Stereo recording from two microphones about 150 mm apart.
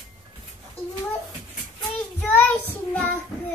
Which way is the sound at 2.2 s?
10° left (ahead or behind).